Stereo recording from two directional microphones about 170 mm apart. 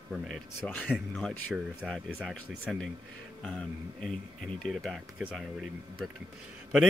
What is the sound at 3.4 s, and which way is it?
Speech, 5° left (ahead or behind).